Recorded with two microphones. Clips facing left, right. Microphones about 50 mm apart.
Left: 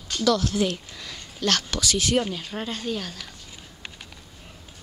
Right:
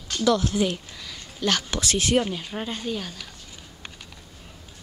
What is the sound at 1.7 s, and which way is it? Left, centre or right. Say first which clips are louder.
Speech: even; right.